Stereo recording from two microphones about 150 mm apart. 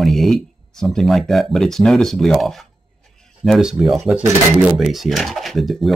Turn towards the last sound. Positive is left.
turn(degrees=0)  # may be behind; listen again after turning